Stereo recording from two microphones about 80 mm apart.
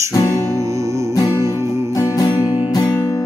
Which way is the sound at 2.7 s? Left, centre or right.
Left.